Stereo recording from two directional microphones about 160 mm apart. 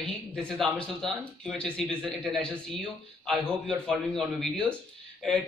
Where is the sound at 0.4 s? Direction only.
5° left (ahead or behind).